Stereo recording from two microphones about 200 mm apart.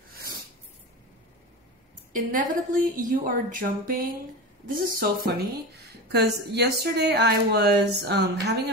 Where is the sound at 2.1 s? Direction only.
40° right (ahead or behind).